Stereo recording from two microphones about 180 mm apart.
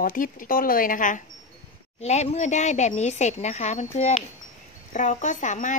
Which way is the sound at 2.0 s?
35° left (ahead or behind).